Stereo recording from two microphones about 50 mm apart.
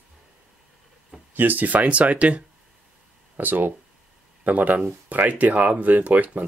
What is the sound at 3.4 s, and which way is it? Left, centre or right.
Speech, right.